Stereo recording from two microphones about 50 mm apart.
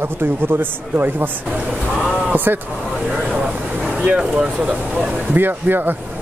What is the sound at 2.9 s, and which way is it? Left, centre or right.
Vehicle, centre.